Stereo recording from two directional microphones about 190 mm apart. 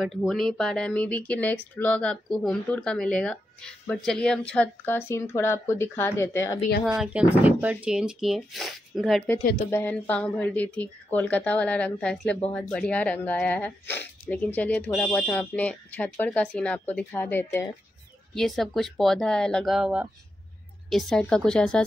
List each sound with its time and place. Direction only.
0.0 s speech: centre (ahead or behind); by 6.6 s 15° left (ahead or behind)
7.0 s speech: 5° right (ahead or behind)
9.4 s speech: 55° left (ahead or behind)
9.7 s speech: 10° left (ahead or behind)